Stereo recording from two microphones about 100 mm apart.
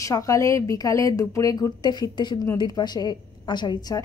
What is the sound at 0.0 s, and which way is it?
A woman's voice, 35° left (ahead or behind).